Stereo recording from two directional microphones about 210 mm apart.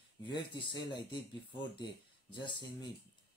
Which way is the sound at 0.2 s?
20° left (ahead or behind).